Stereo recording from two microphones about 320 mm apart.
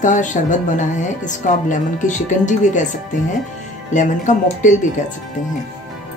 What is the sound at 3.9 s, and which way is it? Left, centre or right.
Speech, left.